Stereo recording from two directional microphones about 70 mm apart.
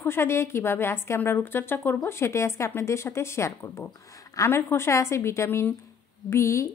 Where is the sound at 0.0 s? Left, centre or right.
Left.